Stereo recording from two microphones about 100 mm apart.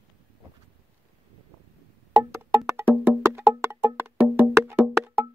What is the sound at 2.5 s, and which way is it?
Music, 25° right (ahead or behind).